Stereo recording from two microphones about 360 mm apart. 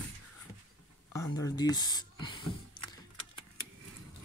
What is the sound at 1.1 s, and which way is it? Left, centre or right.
Speech, centre.